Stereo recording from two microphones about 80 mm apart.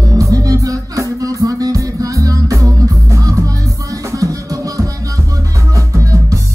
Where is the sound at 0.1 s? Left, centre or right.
Right.